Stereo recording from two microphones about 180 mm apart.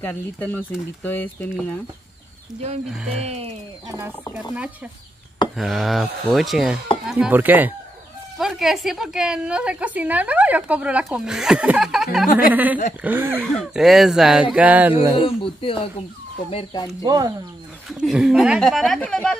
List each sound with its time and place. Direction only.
0.0 s speech: 10° left (ahead or behind)
2.9 s a woman's voice: 5° right (ahead or behind)
3.3 s speech: 35° right (ahead or behind)
5.6 s a woman's voice: centre (ahead or behind)
13.6 s a woman's voice: centre (ahead or behind)
15.2 s speech: 30° left (ahead or behind)
17.0 s speech: 20° right (ahead or behind)
17.8 s a woman's voice: centre (ahead or behind)